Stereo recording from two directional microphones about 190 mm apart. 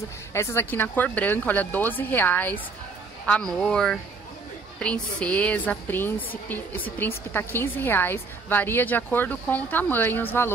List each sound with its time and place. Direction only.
0.3 s a woman's voice: 15° left (ahead or behind)
3.6 s a woman's voice: 5° left (ahead or behind)